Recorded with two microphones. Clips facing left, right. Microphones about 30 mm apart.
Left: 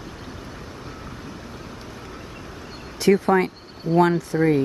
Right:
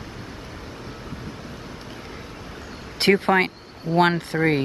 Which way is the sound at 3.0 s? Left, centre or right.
Right.